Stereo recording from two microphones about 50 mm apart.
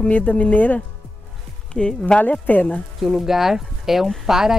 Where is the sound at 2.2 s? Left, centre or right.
Left.